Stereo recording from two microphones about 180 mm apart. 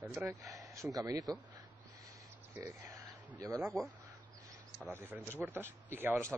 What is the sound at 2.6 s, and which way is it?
Speech, 15° right (ahead or behind).